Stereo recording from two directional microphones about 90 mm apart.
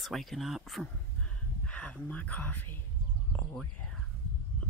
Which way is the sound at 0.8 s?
10° left (ahead or behind).